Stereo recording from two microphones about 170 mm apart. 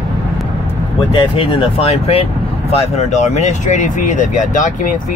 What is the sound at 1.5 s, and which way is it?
Speech, 35° left (ahead or behind).